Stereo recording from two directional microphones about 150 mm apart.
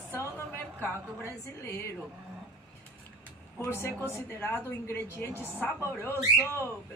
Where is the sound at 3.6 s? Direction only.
15° left (ahead or behind).